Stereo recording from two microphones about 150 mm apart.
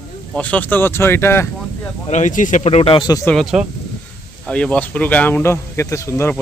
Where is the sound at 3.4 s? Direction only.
5° right (ahead or behind).